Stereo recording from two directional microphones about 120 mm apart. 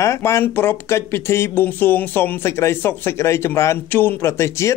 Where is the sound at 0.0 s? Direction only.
25° left (ahead or behind).